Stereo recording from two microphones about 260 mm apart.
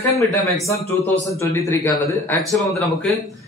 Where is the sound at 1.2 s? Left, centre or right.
Centre.